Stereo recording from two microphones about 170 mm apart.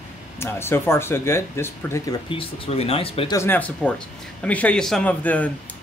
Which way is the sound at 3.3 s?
10° left (ahead or behind).